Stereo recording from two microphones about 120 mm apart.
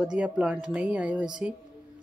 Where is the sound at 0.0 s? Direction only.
10° right (ahead or behind).